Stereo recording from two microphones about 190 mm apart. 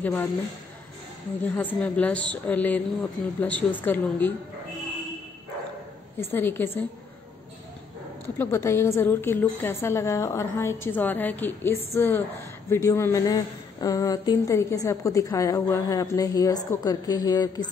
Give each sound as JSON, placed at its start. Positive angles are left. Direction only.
{"t": 0.0, "sound": "a woman's voice", "side_deg": 10}
{"t": 1.4, "sound": "a woman's voice", "side_deg": 10}
{"t": 6.3, "sound": "a woman's voice", "side_deg": 10}
{"t": 8.4, "sound": "a woman's voice", "side_deg": 15}